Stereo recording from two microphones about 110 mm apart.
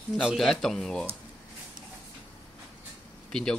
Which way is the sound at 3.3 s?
5° left (ahead or behind).